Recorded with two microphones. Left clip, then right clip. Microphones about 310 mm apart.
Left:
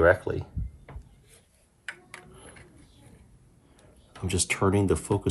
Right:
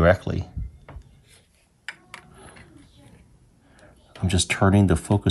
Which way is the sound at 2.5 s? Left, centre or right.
Centre.